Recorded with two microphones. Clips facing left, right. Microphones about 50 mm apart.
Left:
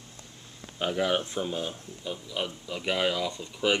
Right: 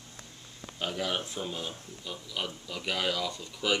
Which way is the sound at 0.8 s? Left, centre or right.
Centre.